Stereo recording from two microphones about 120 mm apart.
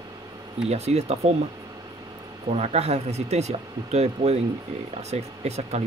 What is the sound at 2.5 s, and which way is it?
Speech, 60° right (ahead or behind).